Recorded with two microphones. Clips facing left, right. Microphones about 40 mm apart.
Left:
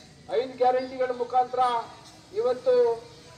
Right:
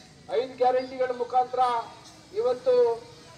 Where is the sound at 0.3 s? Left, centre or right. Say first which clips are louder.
Even; centre.